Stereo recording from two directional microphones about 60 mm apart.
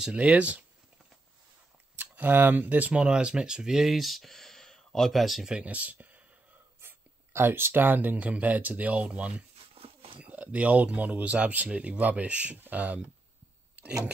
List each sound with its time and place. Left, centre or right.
0.0 s speech: centre
2.0 s speech: right; by 5.5 s centre
5.5 s speech: right
6.8 s speech: right